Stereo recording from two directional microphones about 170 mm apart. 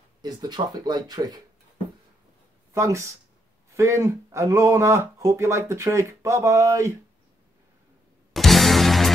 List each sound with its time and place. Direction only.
0.2 s speech: 25° right (ahead or behind)
2.7 s speech: 15° right (ahead or behind)
8.3 s music: centre (ahead or behind)